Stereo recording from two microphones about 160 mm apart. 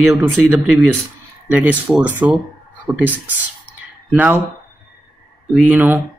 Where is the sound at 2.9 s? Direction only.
20° right (ahead or behind).